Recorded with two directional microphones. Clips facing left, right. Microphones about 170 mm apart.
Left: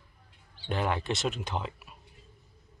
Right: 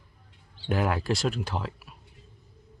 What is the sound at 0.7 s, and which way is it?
Speech, 5° right (ahead or behind).